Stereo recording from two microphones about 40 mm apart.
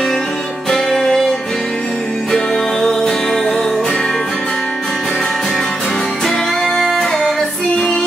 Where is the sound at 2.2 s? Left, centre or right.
Centre.